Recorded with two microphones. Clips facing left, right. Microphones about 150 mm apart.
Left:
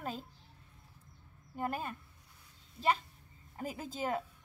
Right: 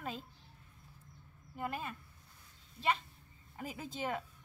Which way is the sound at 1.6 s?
45° left (ahead or behind).